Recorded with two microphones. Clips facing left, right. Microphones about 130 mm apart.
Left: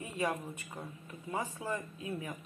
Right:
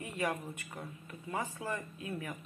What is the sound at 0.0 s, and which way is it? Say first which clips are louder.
Speech: left 1 dB; 15° left (ahead or behind).